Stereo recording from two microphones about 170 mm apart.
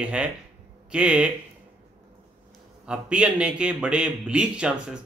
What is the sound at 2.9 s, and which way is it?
A man's voice, 5° right (ahead or behind).